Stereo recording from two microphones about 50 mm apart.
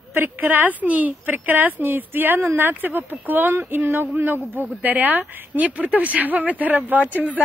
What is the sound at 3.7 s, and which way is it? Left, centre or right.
Speech, right.